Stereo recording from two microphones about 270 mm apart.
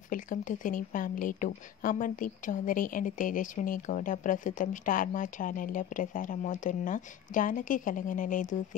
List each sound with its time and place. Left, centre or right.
0.1 s a woman's voice: left